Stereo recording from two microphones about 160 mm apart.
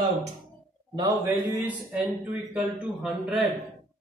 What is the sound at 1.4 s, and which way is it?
A man's voice, 5° right (ahead or behind).